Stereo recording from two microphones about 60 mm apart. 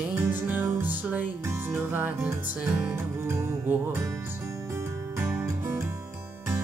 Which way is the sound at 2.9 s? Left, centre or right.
Right.